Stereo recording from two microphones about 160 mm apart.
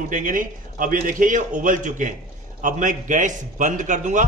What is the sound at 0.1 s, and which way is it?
A man's voice, 55° right (ahead or behind).